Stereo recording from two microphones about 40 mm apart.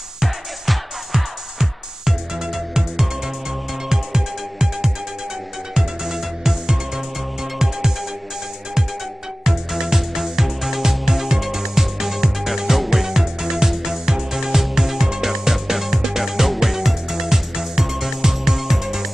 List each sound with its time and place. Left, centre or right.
0.2 s music: centre
9.4 s music: centre